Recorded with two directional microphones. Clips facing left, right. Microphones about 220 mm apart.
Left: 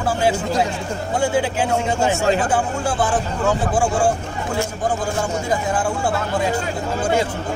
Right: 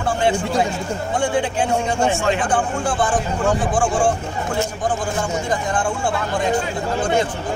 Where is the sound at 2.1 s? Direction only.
40° left (ahead or behind).